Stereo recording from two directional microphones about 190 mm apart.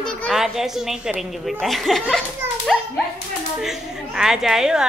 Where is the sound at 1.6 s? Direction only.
Centre (ahead or behind).